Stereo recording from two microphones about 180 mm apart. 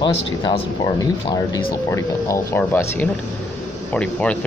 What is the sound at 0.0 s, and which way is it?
Speech, 25° left (ahead or behind).